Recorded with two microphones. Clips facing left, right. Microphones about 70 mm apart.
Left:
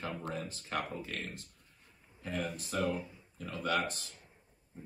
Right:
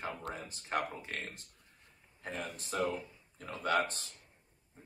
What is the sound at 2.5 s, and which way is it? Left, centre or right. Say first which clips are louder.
Speech: right 2 dB; right.